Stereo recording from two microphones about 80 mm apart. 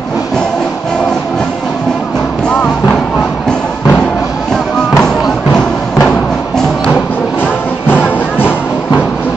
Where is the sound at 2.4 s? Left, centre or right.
Centre.